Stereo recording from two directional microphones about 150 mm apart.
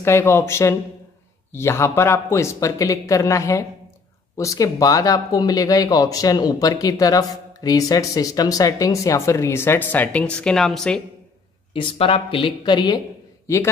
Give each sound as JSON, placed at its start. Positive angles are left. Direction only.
{"t": 0.0, "sound": "speech", "side_deg": 15}
{"t": 11.7, "sound": "speech", "side_deg": 35}